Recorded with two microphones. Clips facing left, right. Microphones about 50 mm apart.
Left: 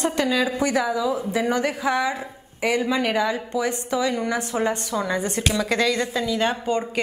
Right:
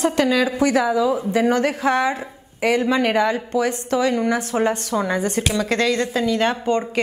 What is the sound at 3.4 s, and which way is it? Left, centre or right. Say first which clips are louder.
Speech: right 4 dB; centre.